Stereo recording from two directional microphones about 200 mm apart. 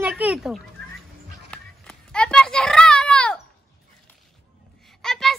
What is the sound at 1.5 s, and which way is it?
Children playing, 5° left (ahead or behind).